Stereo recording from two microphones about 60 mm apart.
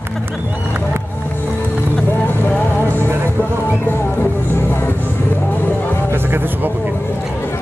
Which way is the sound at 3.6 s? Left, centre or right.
Left.